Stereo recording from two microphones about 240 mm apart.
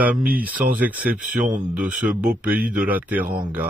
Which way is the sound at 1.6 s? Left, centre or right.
Centre.